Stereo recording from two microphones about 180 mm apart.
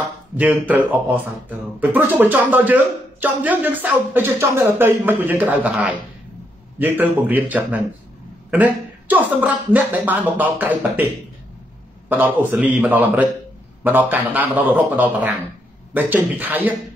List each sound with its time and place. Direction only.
0.4 s speech: 10° right (ahead or behind)
12.1 s a man's voice: 10° right (ahead or behind)